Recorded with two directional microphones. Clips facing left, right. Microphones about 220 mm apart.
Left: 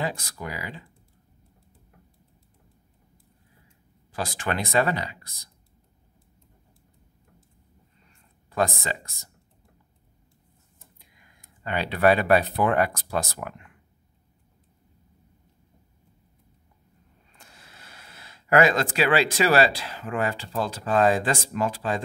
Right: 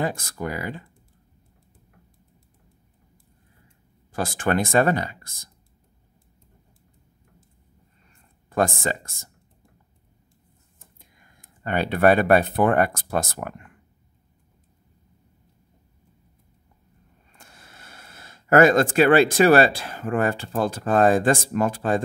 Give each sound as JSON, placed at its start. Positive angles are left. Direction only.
{"t": 0.0, "sound": "speech", "side_deg": -50}
{"t": 4.1, "sound": "speech", "side_deg": -50}
{"t": 8.5, "sound": "speech", "side_deg": -50}
{"t": 10.8, "sound": "speech", "side_deg": -45}
{"t": 17.3, "sound": "speech", "side_deg": -50}